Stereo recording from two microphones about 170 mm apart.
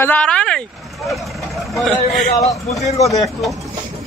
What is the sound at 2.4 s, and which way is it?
Speech, 20° left (ahead or behind).